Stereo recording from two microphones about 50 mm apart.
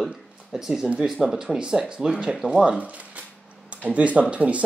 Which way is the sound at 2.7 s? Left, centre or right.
Right.